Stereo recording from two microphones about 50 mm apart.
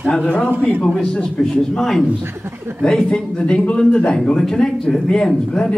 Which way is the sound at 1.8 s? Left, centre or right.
Centre.